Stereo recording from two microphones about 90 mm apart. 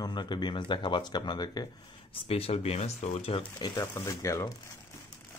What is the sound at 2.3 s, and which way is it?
Speech, 90° left.